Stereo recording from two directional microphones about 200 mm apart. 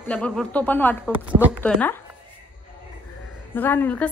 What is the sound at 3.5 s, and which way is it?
Speech, 10° left (ahead or behind).